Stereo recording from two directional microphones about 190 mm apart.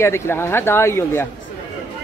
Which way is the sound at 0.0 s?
15° left (ahead or behind).